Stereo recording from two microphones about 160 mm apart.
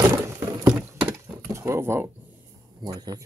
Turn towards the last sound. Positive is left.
turn(degrees=-25)  # may be behind; listen again after turning